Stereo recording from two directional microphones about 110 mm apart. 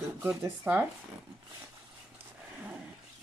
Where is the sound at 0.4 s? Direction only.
15° right (ahead or behind).